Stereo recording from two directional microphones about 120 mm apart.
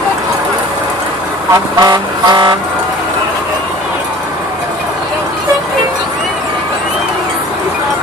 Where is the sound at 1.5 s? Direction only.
35° right (ahead or behind).